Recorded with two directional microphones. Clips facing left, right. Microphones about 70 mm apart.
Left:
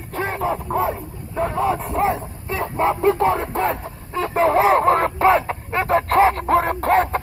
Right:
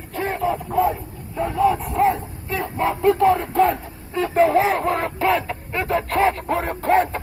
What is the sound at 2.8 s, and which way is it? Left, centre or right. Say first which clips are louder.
Speech: even; left.